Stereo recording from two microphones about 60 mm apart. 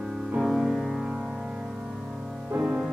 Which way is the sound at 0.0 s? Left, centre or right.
Centre.